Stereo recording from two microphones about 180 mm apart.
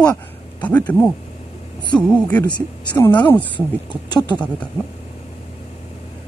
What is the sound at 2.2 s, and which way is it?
Speech, 15° left (ahead or behind).